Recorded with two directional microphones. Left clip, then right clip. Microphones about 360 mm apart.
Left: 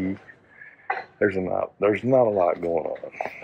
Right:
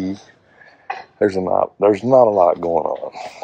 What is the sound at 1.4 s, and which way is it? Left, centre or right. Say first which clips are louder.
Speech: right 8 dB; centre.